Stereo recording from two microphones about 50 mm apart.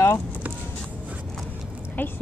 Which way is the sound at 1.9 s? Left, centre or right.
Left.